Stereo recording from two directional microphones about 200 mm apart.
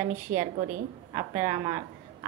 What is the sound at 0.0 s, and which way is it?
A woman's voice, 40° right (ahead or behind).